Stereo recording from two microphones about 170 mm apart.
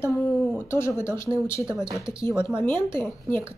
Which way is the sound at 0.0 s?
15° left (ahead or behind).